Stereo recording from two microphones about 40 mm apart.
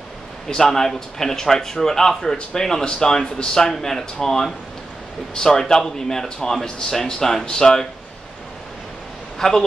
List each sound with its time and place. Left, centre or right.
0.5 s a man's voice: centre
9.4 s a man's voice: centre